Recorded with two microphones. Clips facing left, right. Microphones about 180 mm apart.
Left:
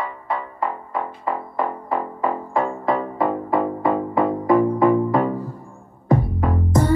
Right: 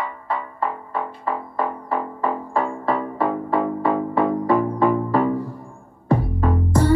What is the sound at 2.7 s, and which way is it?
Music, 20° left (ahead or behind).